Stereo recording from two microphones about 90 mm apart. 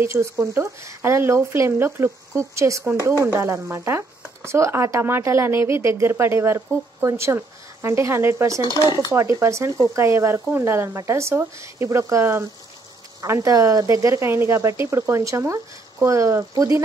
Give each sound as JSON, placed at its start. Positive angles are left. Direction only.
{"t": 0.0, "sound": "speech", "side_deg": -30}